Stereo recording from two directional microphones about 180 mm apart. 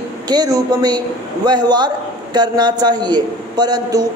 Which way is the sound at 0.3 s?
20° right (ahead or behind).